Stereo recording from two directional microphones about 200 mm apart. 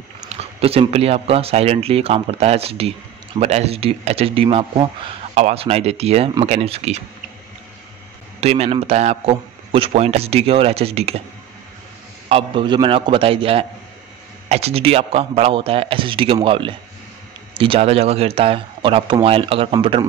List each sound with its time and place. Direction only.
0.2 s speech: 30° right (ahead or behind)
8.4 s speech: 30° right (ahead or behind)
12.3 s speech: 25° right (ahead or behind)